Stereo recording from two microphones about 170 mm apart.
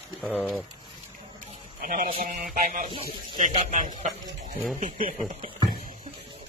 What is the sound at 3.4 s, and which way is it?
Speech, 50° right (ahead or behind).